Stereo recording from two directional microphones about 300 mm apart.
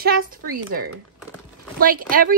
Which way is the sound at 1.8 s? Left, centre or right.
Right.